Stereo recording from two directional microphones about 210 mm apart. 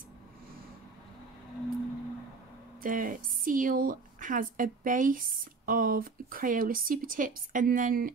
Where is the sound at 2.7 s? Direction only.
40° right (ahead or behind).